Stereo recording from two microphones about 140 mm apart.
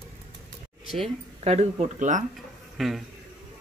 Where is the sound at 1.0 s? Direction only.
50° right (ahead or behind).